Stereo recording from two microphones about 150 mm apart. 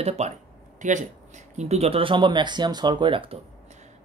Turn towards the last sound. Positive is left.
turn(degrees=-35)  # may be behind; listen again after turning